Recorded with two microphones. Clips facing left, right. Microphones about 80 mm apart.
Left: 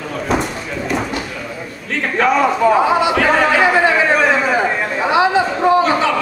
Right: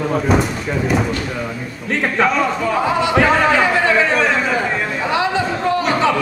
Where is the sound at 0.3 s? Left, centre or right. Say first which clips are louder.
Right 2 dB; centre.